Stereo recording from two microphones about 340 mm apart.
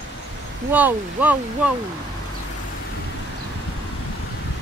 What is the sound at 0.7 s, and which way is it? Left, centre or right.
Speech, centre.